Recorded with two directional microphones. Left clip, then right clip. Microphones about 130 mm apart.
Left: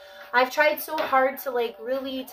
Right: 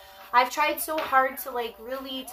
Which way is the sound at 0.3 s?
15° right (ahead or behind).